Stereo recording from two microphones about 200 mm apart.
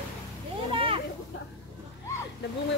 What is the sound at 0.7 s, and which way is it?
Children playing, 25° right (ahead or behind).